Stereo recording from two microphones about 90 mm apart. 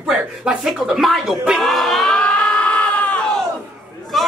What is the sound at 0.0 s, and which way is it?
Speech, 10° right (ahead or behind).